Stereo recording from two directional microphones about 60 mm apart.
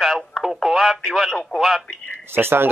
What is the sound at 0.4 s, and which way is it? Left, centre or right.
Speech, centre.